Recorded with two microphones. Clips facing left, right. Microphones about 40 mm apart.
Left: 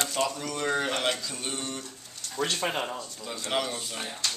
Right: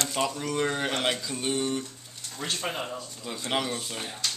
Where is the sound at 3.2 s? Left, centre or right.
Centre.